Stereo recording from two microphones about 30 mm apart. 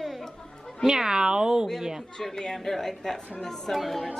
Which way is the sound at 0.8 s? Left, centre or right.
Right.